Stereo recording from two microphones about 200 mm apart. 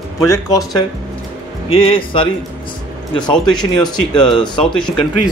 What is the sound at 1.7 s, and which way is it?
Speech, 30° left (ahead or behind).